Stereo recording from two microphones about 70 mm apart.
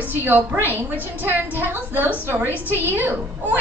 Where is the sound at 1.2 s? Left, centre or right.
Right.